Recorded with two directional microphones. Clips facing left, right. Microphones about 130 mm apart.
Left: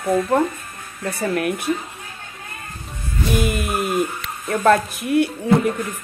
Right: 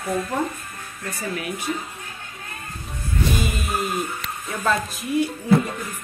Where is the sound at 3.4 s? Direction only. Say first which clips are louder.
Left 4 dB; 60° left (ahead or behind).